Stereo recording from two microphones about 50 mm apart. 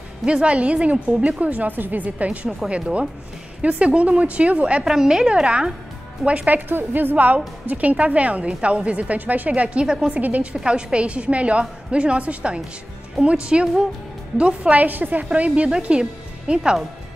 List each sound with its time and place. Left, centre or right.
0.2 s a woman's voice: right
3.6 s a woman's voice: right
4.8 s a woman's voice: centre
6.2 s a woman's voice: right
6.7 s a woman's voice: right
9.5 s a woman's voice: right
10.5 s a woman's voice: centre; by 15.2 s right
15.2 s a woman's voice: right